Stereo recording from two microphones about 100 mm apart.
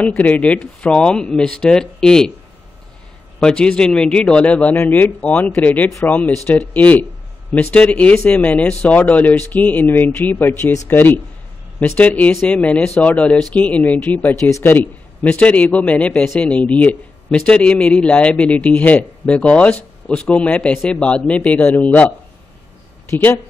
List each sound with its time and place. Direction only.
0.2 s a man's voice: 15° left (ahead or behind)
3.3 s a man's voice: 10° left (ahead or behind)